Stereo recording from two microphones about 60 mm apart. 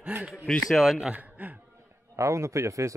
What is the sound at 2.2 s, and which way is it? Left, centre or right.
Speech, right.